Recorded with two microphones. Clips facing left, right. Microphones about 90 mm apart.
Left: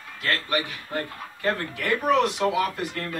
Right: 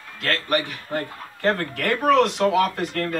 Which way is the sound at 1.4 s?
70° right (ahead or behind).